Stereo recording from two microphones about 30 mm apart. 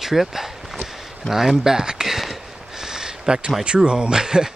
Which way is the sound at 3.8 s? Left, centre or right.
Right.